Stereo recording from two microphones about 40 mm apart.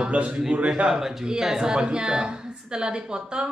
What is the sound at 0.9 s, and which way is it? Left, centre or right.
Speech, centre.